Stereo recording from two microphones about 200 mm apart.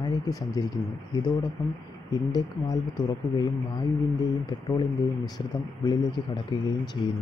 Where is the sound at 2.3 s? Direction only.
20° left (ahead or behind).